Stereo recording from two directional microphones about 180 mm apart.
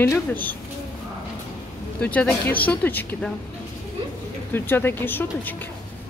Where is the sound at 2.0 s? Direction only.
10° left (ahead or behind).